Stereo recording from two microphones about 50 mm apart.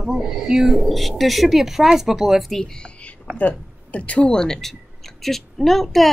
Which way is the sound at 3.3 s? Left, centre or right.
Left.